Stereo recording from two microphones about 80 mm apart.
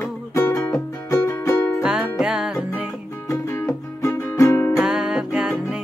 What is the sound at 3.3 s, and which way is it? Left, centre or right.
Music, left.